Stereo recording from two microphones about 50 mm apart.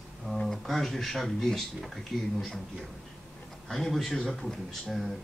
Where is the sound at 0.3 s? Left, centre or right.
Centre.